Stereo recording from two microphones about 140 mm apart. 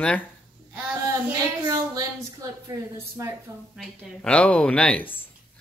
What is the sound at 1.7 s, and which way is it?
Speech, 25° right (ahead or behind).